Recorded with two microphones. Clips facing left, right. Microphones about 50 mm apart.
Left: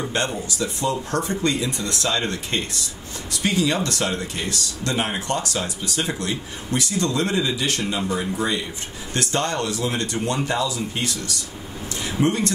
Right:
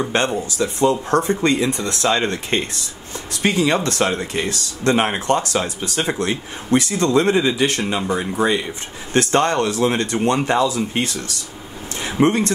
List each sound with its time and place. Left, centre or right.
0.1 s speech: right